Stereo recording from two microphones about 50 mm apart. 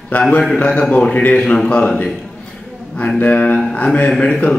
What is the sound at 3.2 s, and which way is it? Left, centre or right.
Mantra, left.